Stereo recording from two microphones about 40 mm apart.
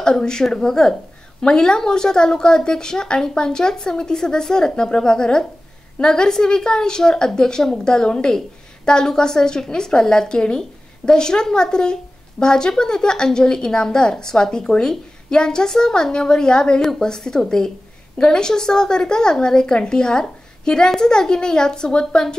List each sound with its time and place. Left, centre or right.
0.0 s a woman's voice: centre